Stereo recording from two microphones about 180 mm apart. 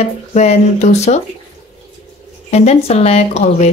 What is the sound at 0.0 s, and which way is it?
Speech, 35° left (ahead or behind).